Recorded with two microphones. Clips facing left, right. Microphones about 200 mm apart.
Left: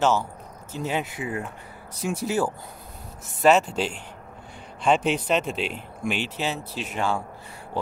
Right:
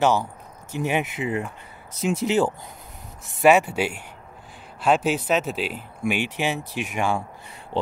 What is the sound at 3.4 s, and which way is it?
Speech, 10° right (ahead or behind).